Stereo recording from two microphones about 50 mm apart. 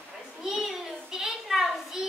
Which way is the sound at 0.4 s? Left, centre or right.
Centre.